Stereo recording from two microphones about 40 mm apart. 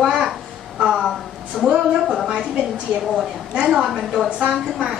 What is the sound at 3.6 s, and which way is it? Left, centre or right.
Speech, centre.